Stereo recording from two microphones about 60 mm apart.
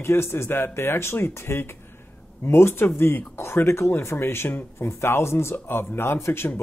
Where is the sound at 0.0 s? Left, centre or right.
Left.